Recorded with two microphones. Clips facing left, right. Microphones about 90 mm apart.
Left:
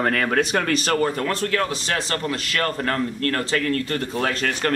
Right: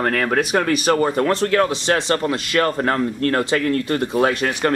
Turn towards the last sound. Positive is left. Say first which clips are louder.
# right 5 dB
turn(degrees=-15)  # may be behind; listen again after turning